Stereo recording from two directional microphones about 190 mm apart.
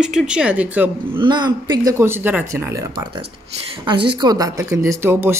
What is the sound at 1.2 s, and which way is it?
Speech, 25° right (ahead or behind).